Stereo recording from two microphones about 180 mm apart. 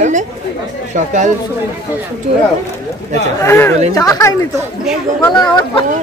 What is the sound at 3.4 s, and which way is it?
Speech, 15° left (ahead or behind).